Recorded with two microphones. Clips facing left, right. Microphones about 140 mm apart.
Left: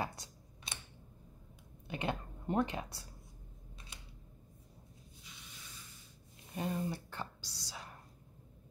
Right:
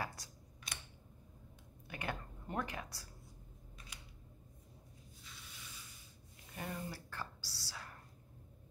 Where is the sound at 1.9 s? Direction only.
20° left (ahead or behind).